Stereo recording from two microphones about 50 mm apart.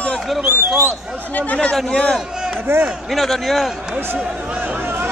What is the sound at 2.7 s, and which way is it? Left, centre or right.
Speech, right.